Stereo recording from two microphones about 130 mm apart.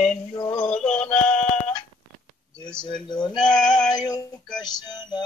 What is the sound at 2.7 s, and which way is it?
Speech, 35° left (ahead or behind).